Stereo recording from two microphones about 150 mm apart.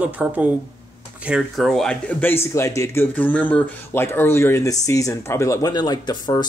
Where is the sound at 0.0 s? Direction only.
10° right (ahead or behind).